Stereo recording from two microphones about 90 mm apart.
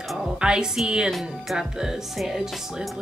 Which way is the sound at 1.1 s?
Centre (ahead or behind).